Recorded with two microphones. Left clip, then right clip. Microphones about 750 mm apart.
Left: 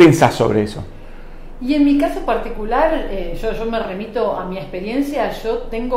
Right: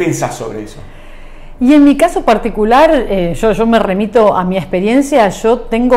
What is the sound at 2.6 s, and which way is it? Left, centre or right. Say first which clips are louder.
A woman's voice: right 10 dB; right.